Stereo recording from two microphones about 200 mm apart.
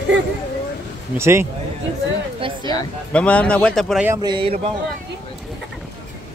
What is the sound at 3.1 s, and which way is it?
Speech, 5° left (ahead or behind).